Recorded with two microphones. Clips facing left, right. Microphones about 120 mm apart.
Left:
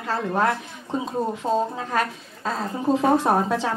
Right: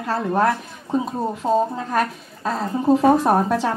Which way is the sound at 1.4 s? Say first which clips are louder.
Right 4 dB; 15° right (ahead or behind).